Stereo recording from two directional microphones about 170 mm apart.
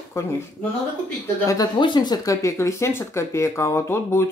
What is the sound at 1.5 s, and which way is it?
Speech, 25° left (ahead or behind).